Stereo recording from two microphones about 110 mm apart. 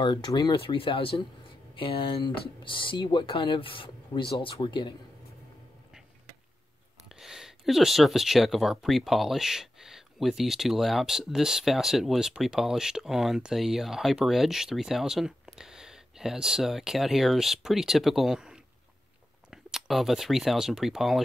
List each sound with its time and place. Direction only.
0.0 s speech: 45° left (ahead or behind)
0.6 s speech: 55° left (ahead or behind)
7.1 s speech: 5° right (ahead or behind)